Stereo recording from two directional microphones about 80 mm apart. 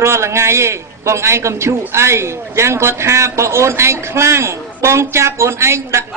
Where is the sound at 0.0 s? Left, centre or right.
Right.